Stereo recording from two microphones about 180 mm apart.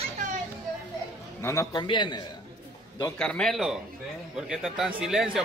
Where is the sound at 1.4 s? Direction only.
15° left (ahead or behind).